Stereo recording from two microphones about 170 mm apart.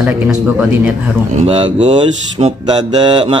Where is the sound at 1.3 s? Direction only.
35° right (ahead or behind).